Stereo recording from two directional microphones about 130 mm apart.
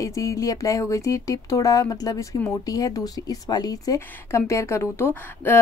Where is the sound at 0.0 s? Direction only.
25° left (ahead or behind).